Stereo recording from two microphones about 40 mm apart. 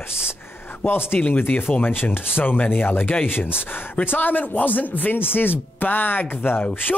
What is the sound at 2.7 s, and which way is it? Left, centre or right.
Speech, left.